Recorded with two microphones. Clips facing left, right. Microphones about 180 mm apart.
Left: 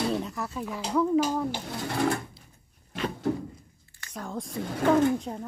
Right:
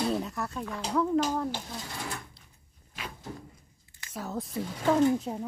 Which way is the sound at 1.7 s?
65° left (ahead or behind).